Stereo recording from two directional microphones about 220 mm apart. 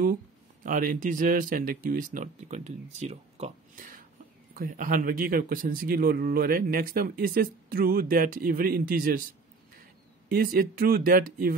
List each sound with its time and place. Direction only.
0.7 s speech: 35° right (ahead or behind)
10.3 s speech: 40° right (ahead or behind)